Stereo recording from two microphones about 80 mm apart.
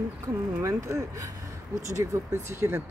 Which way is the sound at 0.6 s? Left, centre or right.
Right.